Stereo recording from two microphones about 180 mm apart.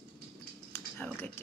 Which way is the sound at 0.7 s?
10° left (ahead or behind).